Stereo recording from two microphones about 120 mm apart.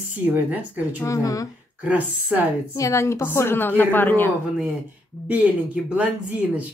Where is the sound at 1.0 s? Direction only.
25° left (ahead or behind).